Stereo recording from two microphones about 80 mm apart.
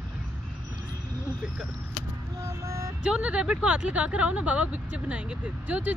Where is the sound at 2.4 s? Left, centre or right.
Right.